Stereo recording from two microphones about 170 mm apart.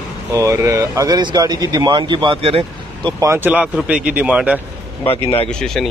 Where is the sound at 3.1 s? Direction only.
15° right (ahead or behind).